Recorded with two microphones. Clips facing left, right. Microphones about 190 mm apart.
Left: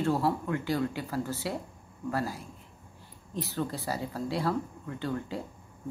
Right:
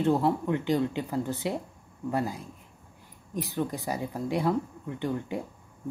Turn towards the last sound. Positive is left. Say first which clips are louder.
# right 3 dB
turn(degrees=-15)  # may be behind; listen again after turning